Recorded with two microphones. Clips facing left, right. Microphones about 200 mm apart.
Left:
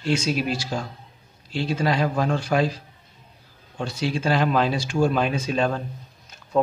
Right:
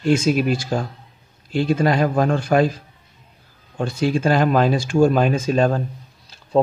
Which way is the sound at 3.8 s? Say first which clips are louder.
Right 6 dB; 50° right (ahead or behind).